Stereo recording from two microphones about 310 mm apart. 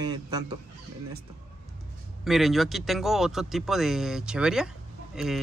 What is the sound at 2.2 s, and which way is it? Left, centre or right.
Speech, centre.